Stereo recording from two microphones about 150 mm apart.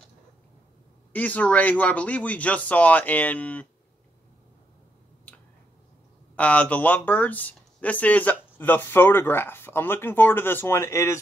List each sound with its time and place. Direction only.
1.1 s speech: 10° left (ahead or behind)
5.3 s finger snapping: 10° left (ahead or behind)
6.3 s speech: 10° left (ahead or behind)